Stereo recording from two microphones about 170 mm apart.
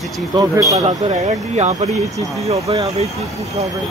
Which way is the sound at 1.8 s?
45° right (ahead or behind).